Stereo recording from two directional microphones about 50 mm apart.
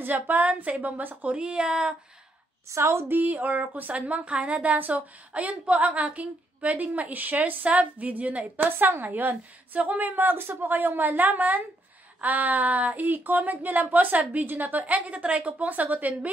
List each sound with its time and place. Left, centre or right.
0.0 s speech: right
1.3 s speech: right
2.7 s a woman's voice: right
3.1 s speech: right